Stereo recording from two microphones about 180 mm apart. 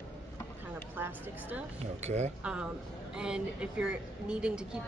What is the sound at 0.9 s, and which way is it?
Speech, 10° right (ahead or behind).